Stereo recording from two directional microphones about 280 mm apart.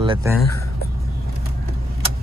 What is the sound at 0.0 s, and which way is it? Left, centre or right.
Speech, centre.